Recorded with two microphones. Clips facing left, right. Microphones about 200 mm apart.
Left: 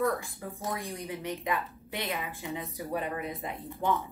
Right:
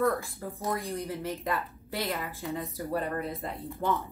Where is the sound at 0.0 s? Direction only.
Centre (ahead or behind).